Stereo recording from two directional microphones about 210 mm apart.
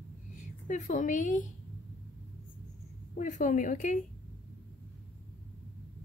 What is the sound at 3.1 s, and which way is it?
Speech, 35° left (ahead or behind).